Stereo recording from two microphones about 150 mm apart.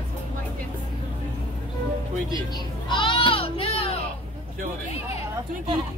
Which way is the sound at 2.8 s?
30° left (ahead or behind).